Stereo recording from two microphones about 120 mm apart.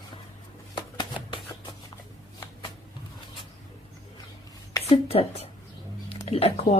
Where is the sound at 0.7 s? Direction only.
40° left (ahead or behind).